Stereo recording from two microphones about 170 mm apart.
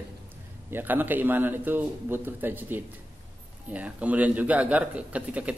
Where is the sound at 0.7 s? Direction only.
10° right (ahead or behind).